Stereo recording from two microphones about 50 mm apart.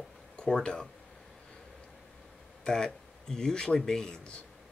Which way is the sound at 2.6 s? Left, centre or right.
Centre.